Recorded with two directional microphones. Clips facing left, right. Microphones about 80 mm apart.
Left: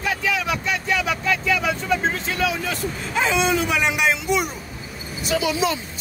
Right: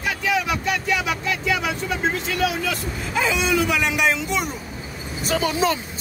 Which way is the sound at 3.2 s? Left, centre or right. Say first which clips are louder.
Left 1 dB; left.